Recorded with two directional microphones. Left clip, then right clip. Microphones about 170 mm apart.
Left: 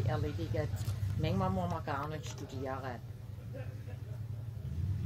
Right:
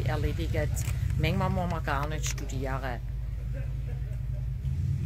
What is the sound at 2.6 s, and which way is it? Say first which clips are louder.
Speech: right 5 dB; 35° right (ahead or behind).